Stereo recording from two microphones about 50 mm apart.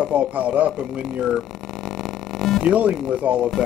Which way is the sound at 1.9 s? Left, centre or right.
Centre.